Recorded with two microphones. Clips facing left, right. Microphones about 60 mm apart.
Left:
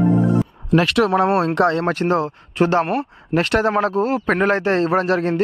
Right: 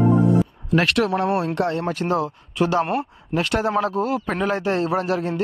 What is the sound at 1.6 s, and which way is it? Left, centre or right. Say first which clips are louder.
Speech: left 6 dB; left.